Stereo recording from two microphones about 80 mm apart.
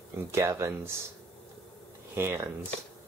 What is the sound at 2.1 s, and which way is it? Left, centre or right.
Speech, right.